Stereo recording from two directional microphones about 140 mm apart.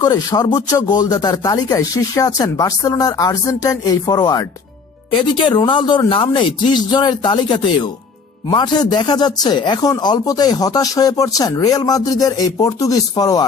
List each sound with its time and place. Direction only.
0.0 s speech: 25° left (ahead or behind)